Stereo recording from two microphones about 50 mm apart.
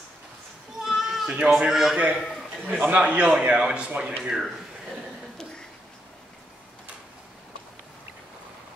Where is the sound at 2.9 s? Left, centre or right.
Right.